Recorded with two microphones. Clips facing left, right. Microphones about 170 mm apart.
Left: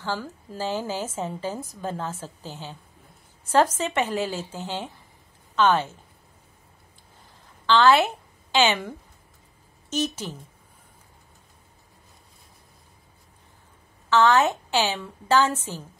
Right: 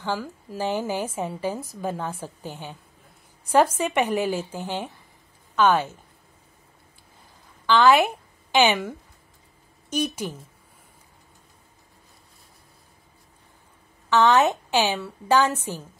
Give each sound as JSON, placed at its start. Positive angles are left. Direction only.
{"t": 0.0, "sound": "a woman's voice", "side_deg": -10}
{"t": 7.6, "sound": "a woman's voice", "side_deg": -10}
{"t": 9.8, "sound": "a woman's voice", "side_deg": -10}
{"t": 14.0, "sound": "a woman's voice", "side_deg": -20}